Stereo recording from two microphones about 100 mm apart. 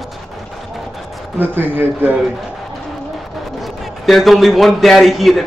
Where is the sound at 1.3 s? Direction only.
20° right (ahead or behind).